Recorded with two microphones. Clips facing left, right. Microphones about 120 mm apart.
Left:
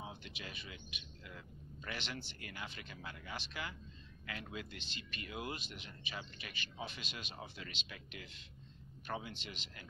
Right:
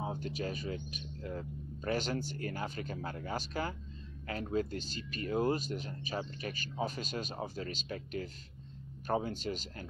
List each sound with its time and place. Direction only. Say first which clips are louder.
0.0 s speech: right 12 dB; 40° right (ahead or behind)